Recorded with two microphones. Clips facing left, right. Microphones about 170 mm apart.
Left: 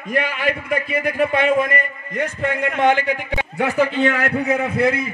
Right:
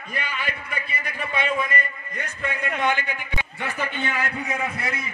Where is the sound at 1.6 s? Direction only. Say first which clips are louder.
Left 5 dB; 90° left; by 5.1 s 55° left (ahead or behind).